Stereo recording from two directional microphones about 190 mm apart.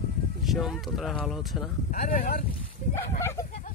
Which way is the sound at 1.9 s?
45° left (ahead or behind).